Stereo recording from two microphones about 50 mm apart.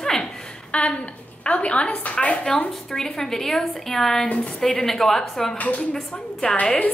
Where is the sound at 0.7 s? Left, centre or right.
Left.